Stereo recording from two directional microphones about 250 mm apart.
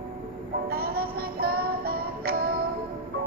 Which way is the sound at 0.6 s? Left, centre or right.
Right.